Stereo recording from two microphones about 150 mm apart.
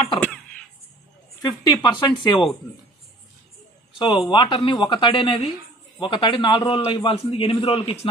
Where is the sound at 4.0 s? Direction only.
35° left (ahead or behind).